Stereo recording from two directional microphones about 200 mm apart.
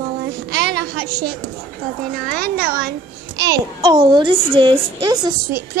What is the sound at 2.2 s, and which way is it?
Speech, 50° right (ahead or behind).